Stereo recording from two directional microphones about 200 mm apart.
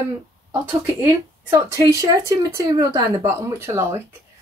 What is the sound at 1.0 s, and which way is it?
Speech, 15° right (ahead or behind).